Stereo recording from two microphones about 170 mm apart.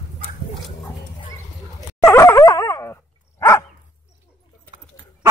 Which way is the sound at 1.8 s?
15° left (ahead or behind).